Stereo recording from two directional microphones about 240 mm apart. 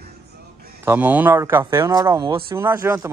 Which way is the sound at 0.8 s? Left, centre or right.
Centre.